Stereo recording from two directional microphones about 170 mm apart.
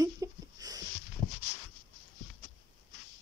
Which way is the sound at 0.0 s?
20° right (ahead or behind).